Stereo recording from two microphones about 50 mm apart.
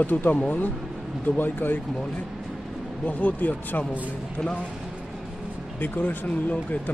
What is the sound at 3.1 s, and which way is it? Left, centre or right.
Speech, left.